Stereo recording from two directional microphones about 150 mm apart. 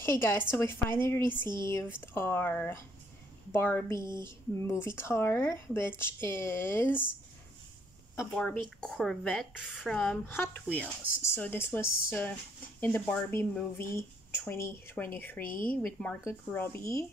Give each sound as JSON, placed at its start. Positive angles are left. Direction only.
{"t": 0.0, "sound": "speech", "side_deg": 20}
{"t": 1.2, "sound": "speech", "side_deg": -30}
{"t": 1.6, "sound": "speech", "side_deg": 20}
{"t": 8.4, "sound": "a woman's voice", "side_deg": 5}